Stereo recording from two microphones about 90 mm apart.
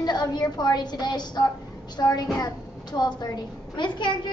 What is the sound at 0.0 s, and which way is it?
A woman's voice, 50° left (ahead or behind).